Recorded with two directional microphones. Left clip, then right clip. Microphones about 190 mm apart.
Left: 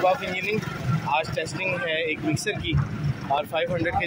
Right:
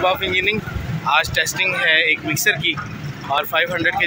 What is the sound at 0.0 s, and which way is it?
Speech, 5° left (ahead or behind).